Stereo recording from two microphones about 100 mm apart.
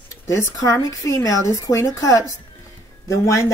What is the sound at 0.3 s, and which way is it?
Speech, 30° left (ahead or behind).